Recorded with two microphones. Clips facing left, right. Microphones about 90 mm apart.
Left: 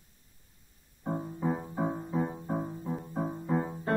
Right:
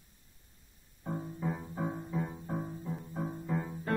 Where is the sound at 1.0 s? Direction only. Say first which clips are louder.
Left 5 dB; 30° left (ahead or behind).